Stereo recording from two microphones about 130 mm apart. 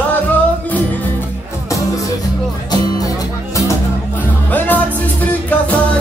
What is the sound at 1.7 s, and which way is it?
Music, 25° left (ahead or behind).